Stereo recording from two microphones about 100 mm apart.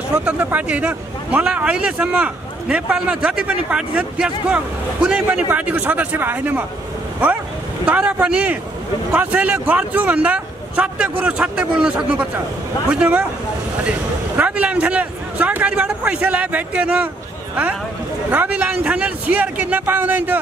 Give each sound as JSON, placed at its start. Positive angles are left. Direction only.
{"t": 0.1, "sound": "speech", "side_deg": -10}
{"t": 7.8, "sound": "speech", "side_deg": -15}
{"t": 18.3, "sound": "speech", "side_deg": -15}